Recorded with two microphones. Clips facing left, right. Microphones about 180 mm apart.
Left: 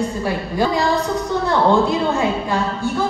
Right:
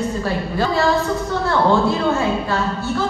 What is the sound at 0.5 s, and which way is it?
Speech, 15° left (ahead or behind).